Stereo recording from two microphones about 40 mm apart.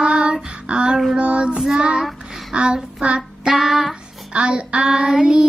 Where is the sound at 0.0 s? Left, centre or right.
Right.